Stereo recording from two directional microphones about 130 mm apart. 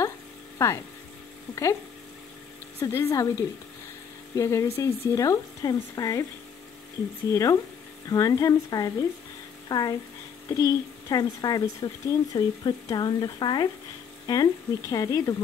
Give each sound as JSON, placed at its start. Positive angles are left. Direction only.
{"t": 0.6, "sound": "speech", "side_deg": 20}
{"t": 2.8, "sound": "speech", "side_deg": 20}
{"t": 7.2, "sound": "speech", "side_deg": 25}